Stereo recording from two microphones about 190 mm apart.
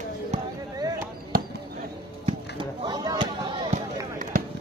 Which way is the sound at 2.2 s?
25° right (ahead or behind).